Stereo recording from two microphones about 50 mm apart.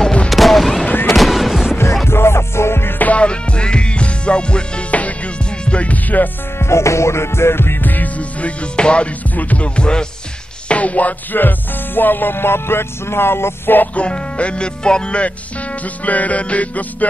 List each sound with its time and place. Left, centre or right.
0.3 s a sound: centre
1.1 s music: centre
2.0 s music: left
3.0 s music: left
6.6 s music: left
7.8 s music: left
9.8 s speech: centre
10.7 s music: left
11.3 s music: left
13.9 s speech: left
15.8 s music: left